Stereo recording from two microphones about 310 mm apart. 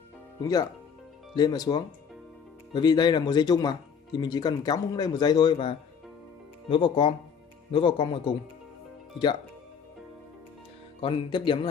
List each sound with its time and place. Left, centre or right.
1.3 s speech: centre
11.0 s speech: centre